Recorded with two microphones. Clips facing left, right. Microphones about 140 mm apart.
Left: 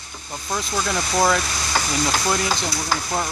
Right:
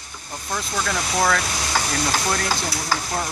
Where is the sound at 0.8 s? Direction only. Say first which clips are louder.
Left 2 dB; 15° left (ahead or behind).